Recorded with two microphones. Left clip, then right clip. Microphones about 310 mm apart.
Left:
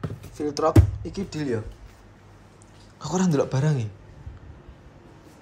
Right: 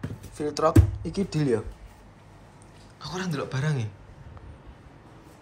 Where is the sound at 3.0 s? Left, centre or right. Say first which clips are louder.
Left 8 dB; centre.